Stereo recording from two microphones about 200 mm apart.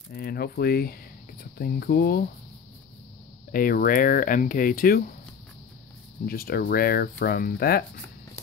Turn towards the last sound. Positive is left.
turn(degrees=50)  # may be behind; listen again after turning